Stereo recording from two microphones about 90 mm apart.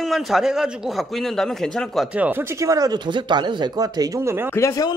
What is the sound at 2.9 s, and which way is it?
Speech, 55° right (ahead or behind).